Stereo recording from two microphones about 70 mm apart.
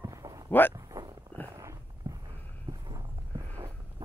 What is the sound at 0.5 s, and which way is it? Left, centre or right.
Speech, left.